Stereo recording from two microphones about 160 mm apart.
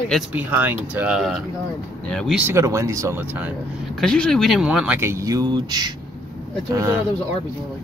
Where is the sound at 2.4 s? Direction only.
15° right (ahead or behind).